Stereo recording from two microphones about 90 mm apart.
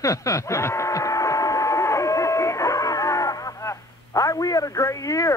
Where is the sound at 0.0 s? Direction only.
35° left (ahead or behind).